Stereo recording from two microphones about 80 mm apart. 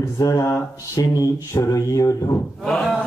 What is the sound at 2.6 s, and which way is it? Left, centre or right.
Speech, centre.